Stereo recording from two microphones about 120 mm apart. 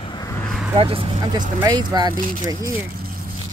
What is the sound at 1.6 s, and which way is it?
Speech, 35° right (ahead or behind).